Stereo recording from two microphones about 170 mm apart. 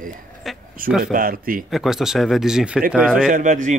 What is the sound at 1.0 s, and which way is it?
Speech, 55° right (ahead or behind).